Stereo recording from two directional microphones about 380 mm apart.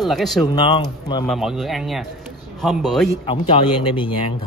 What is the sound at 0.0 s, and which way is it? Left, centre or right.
Speech, centre.